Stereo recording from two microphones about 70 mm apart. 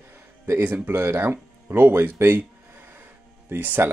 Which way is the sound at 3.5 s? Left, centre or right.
Right.